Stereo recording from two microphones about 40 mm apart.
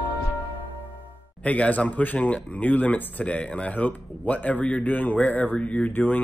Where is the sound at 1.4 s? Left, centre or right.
Left.